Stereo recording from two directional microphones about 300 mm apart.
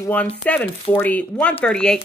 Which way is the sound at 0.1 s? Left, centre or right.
Centre.